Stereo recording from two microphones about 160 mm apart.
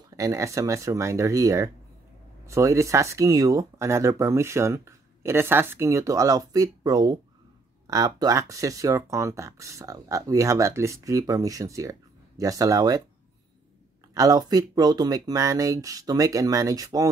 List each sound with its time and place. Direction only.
0.1 s speech: 20° right (ahead or behind)
14.1 s speech: 25° right (ahead or behind)